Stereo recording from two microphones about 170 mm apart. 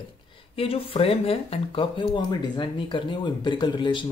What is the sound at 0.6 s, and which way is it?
Speech, 35° left (ahead or behind).